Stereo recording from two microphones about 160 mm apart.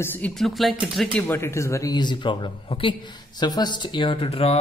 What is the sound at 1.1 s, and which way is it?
Speech, 15° left (ahead or behind).